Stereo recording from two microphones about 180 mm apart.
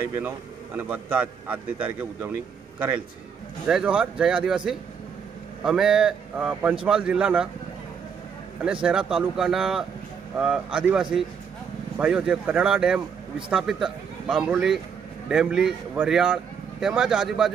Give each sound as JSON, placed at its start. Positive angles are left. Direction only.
{"t": 0.7, "sound": "a man's voice", "side_deg": -10}
{"t": 3.6, "sound": "speech", "side_deg": -5}
{"t": 8.8, "sound": "speech", "side_deg": -5}